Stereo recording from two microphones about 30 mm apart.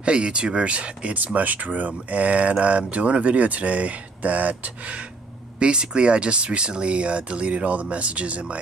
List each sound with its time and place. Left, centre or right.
0.0 s speech: right
1.1 s speech: right
5.6 s speech: right